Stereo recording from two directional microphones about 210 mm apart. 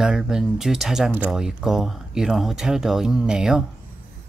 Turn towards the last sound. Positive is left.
turn(degrees=-5)  # may be behind; listen again after turning